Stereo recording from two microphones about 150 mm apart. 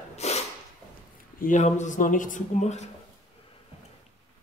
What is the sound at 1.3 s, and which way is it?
Speech, 65° left (ahead or behind).